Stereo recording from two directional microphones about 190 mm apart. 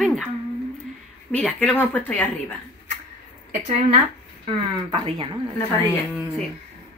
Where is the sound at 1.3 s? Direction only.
5° left (ahead or behind).